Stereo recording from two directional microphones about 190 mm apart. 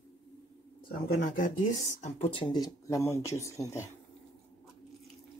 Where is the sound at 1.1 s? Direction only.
45° left (ahead or behind); by 3.5 s 15° left (ahead or behind).